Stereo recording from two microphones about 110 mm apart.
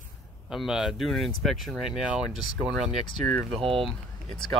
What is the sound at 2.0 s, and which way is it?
Speech, 10° right (ahead or behind).